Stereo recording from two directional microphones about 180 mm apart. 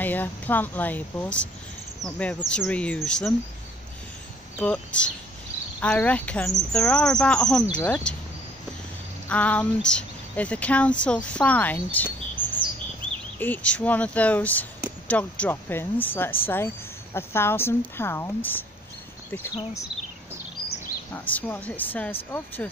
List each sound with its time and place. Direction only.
0.0 s speech: 10° left (ahead or behind)
4.6 s speech: 5° left (ahead or behind)
9.3 s speech: 5° left (ahead or behind)
11.3 s chirp: 10° left (ahead or behind)
13.4 s speech: 10° left (ahead or behind)
21.1 s speech: 10° left (ahead or behind)